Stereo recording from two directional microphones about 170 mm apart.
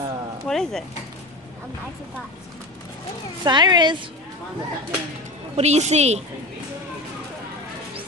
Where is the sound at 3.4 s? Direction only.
25° right (ahead or behind).